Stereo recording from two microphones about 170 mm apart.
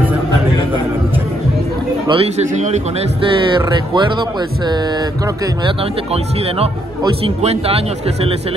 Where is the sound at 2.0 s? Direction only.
35° right (ahead or behind).